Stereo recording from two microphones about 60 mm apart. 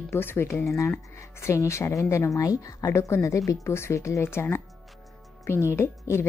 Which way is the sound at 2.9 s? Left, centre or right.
Left.